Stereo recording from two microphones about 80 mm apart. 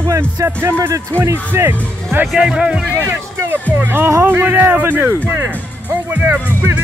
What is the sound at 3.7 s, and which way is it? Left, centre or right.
Speech, right.